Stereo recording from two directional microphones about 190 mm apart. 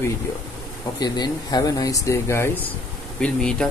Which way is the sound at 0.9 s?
20° left (ahead or behind).